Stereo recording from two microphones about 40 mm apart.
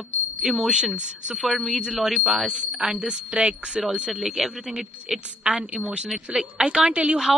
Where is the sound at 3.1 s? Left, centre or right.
Right.